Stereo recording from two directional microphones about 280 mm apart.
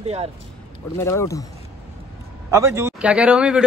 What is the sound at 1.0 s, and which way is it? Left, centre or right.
Speech, centre.